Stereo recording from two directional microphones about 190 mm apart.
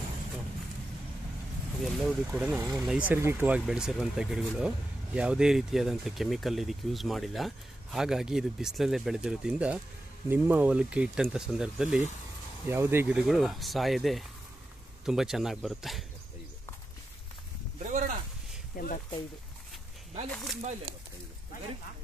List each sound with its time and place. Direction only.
1.8 s speech: centre (ahead or behind)
17.8 s a sound: 40° right (ahead or behind)
18.8 s speech: 50° left (ahead or behind)